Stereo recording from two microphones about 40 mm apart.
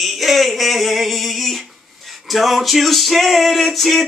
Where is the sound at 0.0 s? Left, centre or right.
Centre.